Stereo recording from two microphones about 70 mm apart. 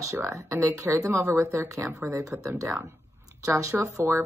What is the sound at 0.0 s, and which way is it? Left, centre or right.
Speech, right.